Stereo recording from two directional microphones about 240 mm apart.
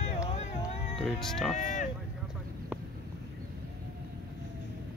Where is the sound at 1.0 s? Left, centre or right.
Centre.